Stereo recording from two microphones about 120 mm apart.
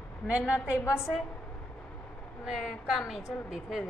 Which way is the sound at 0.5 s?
20° left (ahead or behind).